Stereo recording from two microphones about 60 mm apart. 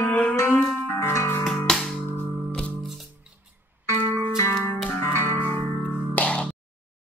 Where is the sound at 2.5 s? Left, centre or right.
Left.